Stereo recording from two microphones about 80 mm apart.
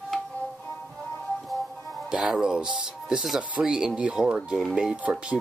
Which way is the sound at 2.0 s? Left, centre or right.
Centre.